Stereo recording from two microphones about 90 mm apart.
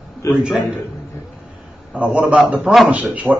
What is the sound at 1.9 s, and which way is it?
A man's voice, 15° right (ahead or behind).